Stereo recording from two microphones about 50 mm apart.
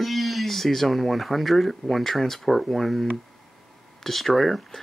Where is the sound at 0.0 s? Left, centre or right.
Centre.